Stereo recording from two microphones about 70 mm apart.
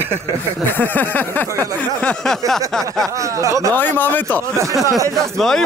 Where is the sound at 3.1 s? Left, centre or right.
Right.